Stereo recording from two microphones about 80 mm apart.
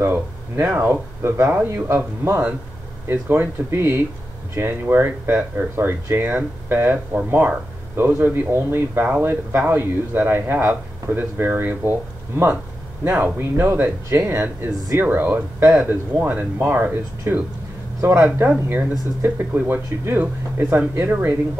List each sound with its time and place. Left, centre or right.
0.0 s speech: right
13.0 s speech: right
18.7 s speech: right